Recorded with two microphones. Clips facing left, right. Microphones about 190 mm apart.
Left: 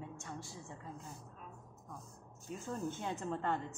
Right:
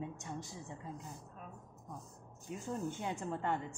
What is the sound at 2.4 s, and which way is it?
A woman's voice, 15° right (ahead or behind).